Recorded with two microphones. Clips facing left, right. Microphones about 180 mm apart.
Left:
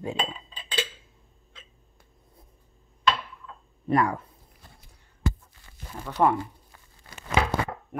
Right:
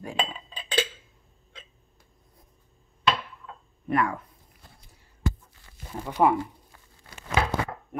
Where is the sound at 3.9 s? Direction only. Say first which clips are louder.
Left 2 dB; 35° left (ahead or behind).